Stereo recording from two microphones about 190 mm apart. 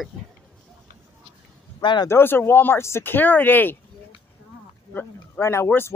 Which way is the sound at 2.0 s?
10° left (ahead or behind).